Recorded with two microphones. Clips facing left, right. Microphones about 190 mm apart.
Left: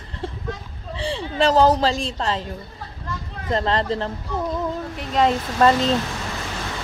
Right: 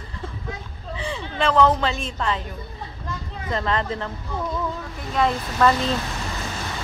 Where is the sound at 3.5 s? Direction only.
35° left (ahead or behind).